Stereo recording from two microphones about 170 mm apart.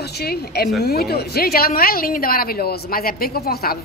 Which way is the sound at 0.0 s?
70° left (ahead or behind).